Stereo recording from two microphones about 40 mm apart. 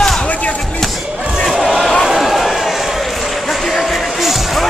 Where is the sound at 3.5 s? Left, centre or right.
Centre.